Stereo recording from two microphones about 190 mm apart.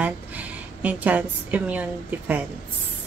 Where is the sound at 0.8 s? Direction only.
10° right (ahead or behind).